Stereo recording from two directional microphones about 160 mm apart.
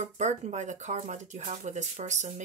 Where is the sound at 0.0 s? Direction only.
45° right (ahead or behind).